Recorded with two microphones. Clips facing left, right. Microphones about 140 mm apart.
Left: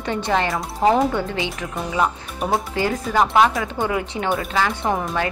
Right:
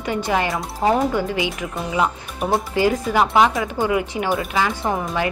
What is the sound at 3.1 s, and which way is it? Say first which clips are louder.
Speech: left 4 dB; 10° right (ahead or behind).